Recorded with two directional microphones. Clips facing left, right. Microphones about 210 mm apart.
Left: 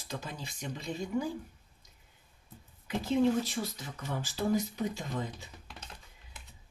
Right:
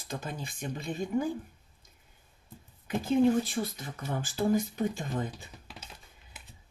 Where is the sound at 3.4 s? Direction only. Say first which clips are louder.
Right 3 dB; 50° right (ahead or behind).